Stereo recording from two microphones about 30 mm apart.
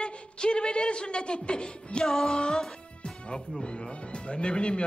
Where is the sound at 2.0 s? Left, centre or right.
Centre.